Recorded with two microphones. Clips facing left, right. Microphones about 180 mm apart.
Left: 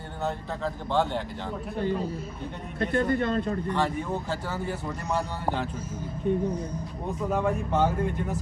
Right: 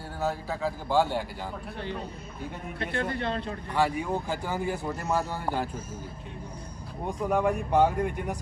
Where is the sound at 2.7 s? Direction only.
45° left (ahead or behind).